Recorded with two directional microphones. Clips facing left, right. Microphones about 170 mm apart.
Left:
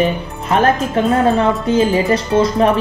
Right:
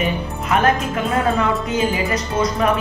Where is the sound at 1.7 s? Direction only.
30° left (ahead or behind).